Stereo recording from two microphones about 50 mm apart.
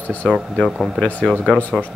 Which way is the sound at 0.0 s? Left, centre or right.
Left.